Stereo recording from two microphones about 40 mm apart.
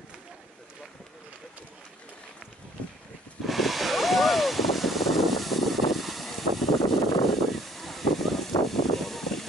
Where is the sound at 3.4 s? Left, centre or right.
Centre.